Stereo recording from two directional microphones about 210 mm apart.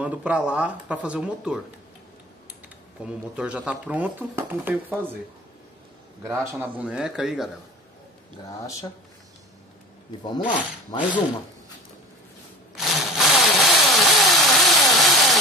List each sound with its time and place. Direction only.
0.0 s speech: 5° right (ahead or behind)
3.3 s speech: 5° right (ahead or behind)
6.2 s speech: 15° right (ahead or behind)
10.2 s speech: 20° left (ahead or behind)
12.7 s engine: centre (ahead or behind)